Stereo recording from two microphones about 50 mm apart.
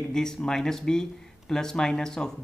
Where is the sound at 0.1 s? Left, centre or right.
Centre.